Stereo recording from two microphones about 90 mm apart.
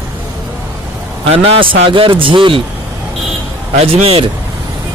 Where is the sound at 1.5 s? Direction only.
75° right (ahead or behind).